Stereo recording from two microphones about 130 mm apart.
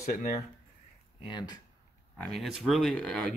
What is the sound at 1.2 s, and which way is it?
Speech, 35° left (ahead or behind).